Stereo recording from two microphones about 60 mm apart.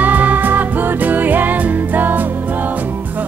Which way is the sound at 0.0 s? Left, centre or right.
Right.